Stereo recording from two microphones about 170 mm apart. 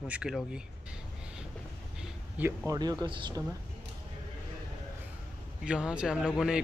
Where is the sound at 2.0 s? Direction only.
10° right (ahead or behind).